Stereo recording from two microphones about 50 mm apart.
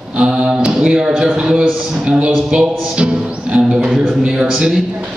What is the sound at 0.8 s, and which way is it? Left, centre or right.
Music, centre.